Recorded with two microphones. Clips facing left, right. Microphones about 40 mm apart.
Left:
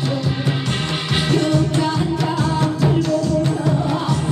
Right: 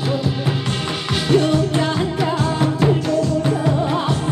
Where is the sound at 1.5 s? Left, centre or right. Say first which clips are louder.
Even; right.